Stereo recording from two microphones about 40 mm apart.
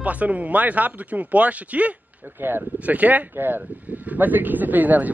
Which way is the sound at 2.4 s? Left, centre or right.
Right.